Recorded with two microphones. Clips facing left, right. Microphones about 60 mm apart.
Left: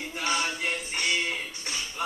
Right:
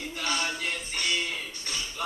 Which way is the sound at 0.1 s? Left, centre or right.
Centre.